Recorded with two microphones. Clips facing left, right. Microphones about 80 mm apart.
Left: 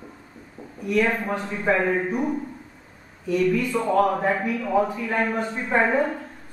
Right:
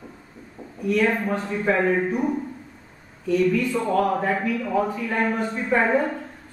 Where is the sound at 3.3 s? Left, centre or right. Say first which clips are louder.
Right 1 dB; centre.